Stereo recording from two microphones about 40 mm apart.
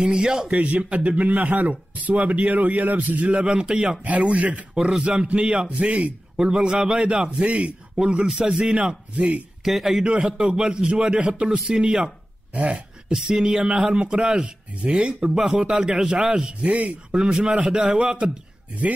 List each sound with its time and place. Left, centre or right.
0.0 s speech: centre
0.5 s speech: right
1.3 s a man's voice: right
4.7 s a man's voice: centre; by 9.4 s right
9.7 s a man's voice: centre
10.4 s a man's voice: centre
11.1 s speech: right
11.4 s speech: centre
11.8 s a man's voice: right
12.5 s speech: right
13.1 s a man's voice: centre
14.8 s speech: right
15.0 s a man's voice: right